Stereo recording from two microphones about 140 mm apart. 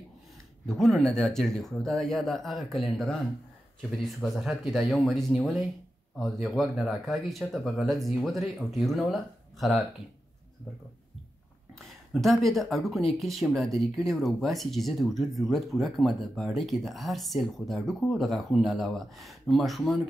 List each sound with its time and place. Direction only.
0.7 s speech: centre (ahead or behind)
11.8 s speech: centre (ahead or behind)